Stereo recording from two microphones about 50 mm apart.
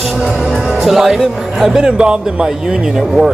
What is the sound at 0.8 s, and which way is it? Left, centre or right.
Speech, centre.